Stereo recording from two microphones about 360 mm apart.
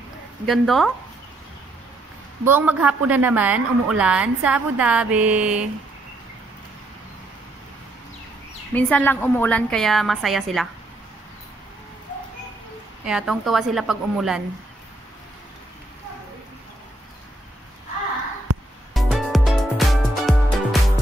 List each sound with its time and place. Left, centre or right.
0.5 s a woman's voice: centre
2.4 s a woman's voice: centre
8.7 s a woman's voice: centre
13.0 s a woman's voice: centre
18.9 s music: centre